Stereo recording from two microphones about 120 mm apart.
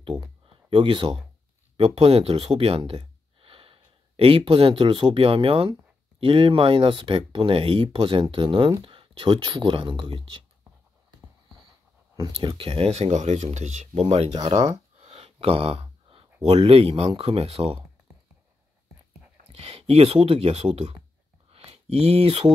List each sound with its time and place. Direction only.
0.5 s speech: 50° right (ahead or behind)
12.2 s speech: 35° right (ahead or behind)
12.5 s speech: 50° right (ahead or behind)
14.4 s a sound: 65° right (ahead or behind); by 16.3 s 50° right (ahead or behind)
16.5 s speech: 55° right (ahead or behind)
19.5 s speech: 55° right (ahead or behind)
21.5 s a sound: 55° right (ahead or behind)